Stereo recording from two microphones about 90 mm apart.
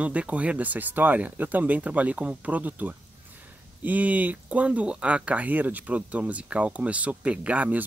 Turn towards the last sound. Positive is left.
turn(degrees=-15)  # may be behind; listen again after turning